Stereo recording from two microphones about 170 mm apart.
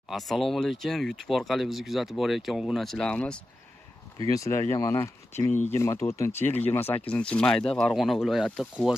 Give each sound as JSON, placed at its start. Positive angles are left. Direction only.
{"t": 0.1, "sound": "speech", "side_deg": 0}
{"t": 4.3, "sound": "speech", "side_deg": 20}